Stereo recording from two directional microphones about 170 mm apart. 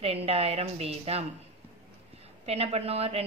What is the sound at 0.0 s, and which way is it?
A woman's voice, 35° right (ahead or behind).